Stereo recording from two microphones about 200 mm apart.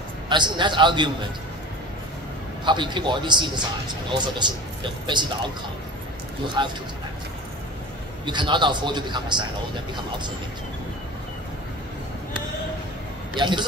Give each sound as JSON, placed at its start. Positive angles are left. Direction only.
{"t": 0.3, "sound": "a man's voice", "side_deg": -20}
{"t": 2.6, "sound": "a man's voice", "side_deg": -25}
{"t": 6.6, "sound": "a man's voice", "side_deg": -25}
{"t": 8.3, "sound": "a man's voice", "side_deg": -25}
{"t": 13.4, "sound": "a man's voice", "side_deg": -20}